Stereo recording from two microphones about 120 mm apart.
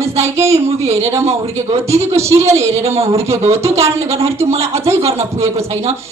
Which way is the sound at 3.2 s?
25° right (ahead or behind).